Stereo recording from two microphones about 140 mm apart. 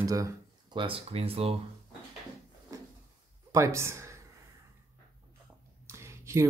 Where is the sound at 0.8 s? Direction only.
40° right (ahead or behind).